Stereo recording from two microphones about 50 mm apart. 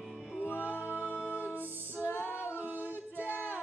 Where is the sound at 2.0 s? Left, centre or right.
Left.